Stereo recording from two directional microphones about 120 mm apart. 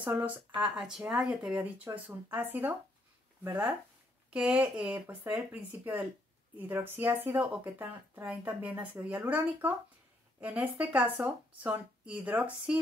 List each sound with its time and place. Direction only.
0.6 s speech: 5° right (ahead or behind)